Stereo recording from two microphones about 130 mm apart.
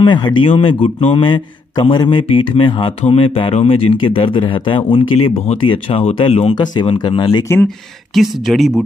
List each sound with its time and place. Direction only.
0.0 s a man's voice: 35° left (ahead or behind)
6.5 s a man's voice: 35° left (ahead or behind)
7.6 s speech: centre (ahead or behind)